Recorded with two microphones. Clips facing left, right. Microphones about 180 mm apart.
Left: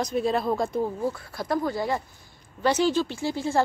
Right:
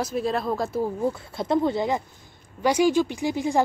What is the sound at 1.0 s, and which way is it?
A woman's voice, 25° right (ahead or behind).